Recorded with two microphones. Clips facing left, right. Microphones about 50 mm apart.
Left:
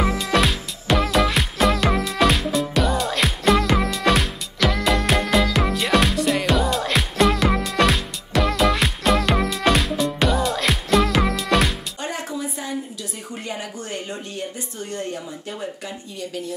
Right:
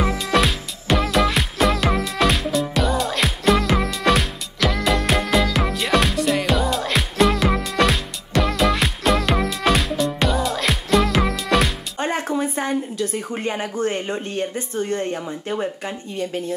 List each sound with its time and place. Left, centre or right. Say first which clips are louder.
0.0 s music: right 1 dB; centre
12.0 s a sound: right 7 dB; right
13.3 s speech: right 6 dB; right